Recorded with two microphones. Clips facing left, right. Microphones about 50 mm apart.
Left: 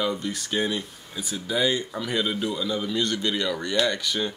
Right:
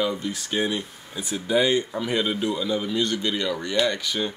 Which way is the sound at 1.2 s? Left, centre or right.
Right.